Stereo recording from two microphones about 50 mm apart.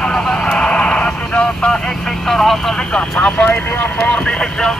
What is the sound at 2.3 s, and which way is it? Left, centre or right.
Vehicle, centre.